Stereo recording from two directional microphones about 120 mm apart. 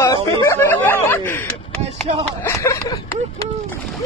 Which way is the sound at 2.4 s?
25° left (ahead or behind).